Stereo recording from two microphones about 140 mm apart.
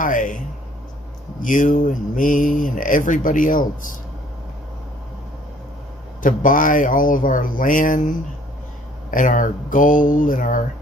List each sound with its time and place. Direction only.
0.0 s a sound: 70° left (ahead or behind)
1.4 s speech: 70° left (ahead or behind)
6.2 s speech: 70° left (ahead or behind)